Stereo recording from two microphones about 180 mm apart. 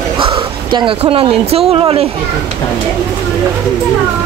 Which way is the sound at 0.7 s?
25° right (ahead or behind).